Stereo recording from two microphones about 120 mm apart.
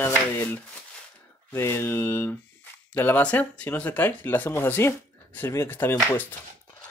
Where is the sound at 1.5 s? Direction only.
20° left (ahead or behind).